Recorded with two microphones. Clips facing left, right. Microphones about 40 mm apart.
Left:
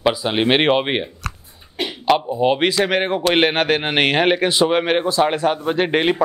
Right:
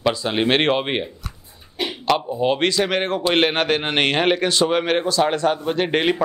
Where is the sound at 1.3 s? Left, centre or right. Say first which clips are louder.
Left 8 dB; left.